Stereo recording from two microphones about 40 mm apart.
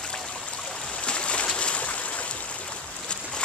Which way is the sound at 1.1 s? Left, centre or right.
Left.